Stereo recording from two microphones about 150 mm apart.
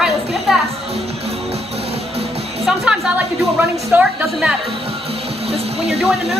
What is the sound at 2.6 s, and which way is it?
A woman's voice, centre (ahead or behind).